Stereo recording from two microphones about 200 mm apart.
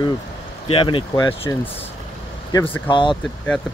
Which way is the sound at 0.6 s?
25° left (ahead or behind).